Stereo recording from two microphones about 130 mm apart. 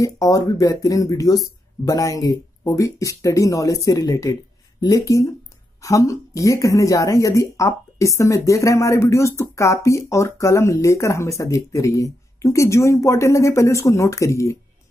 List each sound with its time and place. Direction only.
0.0 s speech: 25° left (ahead or behind)